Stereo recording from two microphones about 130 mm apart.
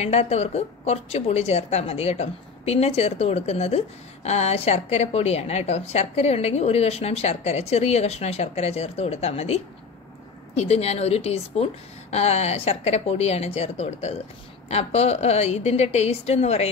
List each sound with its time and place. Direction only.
0.0 s a woman's voice: 55° left (ahead or behind)